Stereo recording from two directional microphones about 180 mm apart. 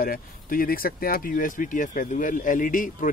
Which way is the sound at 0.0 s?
55° left (ahead or behind).